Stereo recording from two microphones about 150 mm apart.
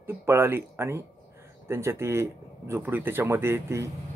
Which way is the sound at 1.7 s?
15° right (ahead or behind).